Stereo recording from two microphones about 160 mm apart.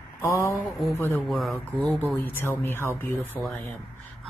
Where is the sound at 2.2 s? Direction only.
10° left (ahead or behind).